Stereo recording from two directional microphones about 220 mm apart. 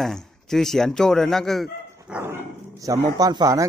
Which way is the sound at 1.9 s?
10° right (ahead or behind).